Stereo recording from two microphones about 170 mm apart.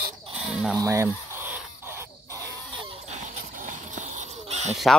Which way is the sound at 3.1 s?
45° right (ahead or behind).